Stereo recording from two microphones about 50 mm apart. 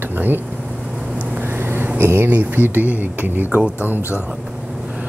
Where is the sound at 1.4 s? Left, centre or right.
Right.